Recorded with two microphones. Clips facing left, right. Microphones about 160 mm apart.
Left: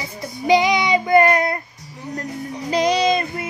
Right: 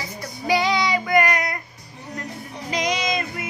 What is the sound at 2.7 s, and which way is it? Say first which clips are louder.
Child singing: left 7 dB; 35° left (ahead or behind).